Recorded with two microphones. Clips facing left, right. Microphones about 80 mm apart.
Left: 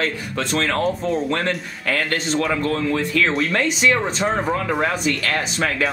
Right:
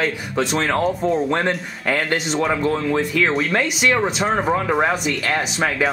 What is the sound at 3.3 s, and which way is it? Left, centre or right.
Speech, centre.